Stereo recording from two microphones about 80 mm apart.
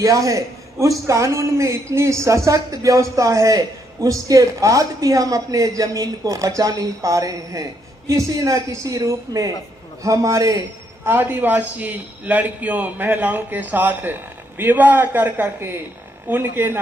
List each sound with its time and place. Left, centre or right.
0.0 s a man's voice: right
11.1 s a man's voice: right